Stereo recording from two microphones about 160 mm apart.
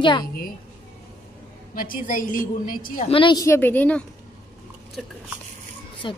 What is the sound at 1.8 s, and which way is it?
A woman's voice, 60° left (ahead or behind).